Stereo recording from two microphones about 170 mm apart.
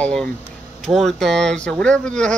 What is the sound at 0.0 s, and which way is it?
Speech, 5° left (ahead or behind).